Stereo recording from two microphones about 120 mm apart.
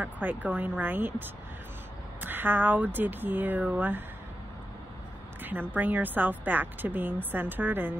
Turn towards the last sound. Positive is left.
turn(degrees=-15)  # may be behind; listen again after turning